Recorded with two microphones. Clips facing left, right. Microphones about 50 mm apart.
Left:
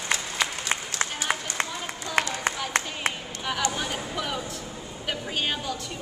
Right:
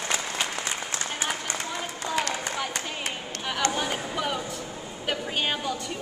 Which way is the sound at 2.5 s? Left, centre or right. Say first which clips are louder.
Left 3 dB; left.